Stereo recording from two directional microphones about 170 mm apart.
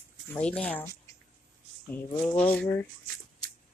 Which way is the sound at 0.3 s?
5° left (ahead or behind).